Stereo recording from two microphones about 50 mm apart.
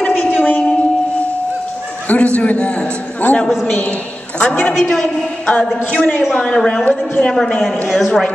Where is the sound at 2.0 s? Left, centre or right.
Left.